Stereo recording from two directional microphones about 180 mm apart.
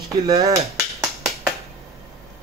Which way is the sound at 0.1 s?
15° right (ahead or behind).